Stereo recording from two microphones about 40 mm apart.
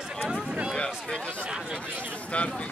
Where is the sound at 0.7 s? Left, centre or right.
Centre.